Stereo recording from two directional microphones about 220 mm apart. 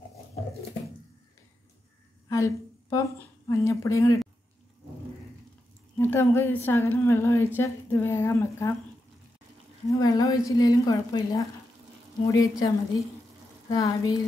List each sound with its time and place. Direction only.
2.2 s a woman's voice: 15° left (ahead or behind)
5.9 s a woman's voice: 10° left (ahead or behind)
9.9 s a woman's voice: 15° left (ahead or behind)